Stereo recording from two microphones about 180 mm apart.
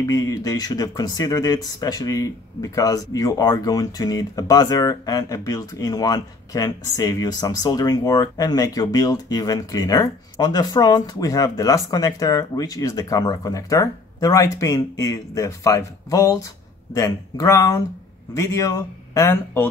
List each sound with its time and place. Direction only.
0.0 s speech: 20° left (ahead or behind)